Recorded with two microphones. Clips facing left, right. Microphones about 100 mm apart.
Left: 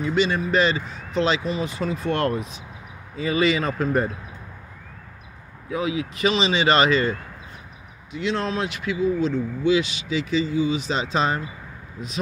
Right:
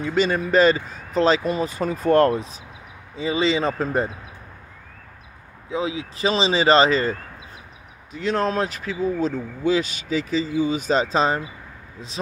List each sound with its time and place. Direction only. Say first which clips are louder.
0.0 s a man's voice: right 1 dB; 45° right (ahead or behind); by 4.1 s 30° right (ahead or behind)
5.7 s speech: left 1 dB; 30° right (ahead or behind)